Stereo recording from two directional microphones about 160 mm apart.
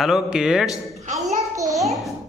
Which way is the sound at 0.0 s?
5° right (ahead or behind).